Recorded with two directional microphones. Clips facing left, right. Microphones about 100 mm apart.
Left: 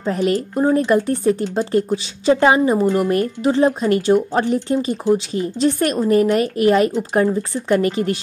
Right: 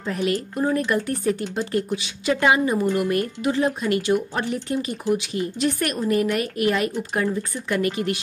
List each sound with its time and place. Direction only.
0.2 s speech: 35° left (ahead or behind)